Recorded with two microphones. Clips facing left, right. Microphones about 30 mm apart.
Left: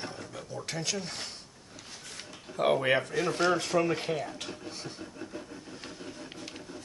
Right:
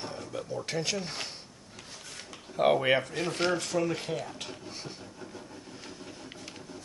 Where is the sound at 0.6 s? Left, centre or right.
Centre.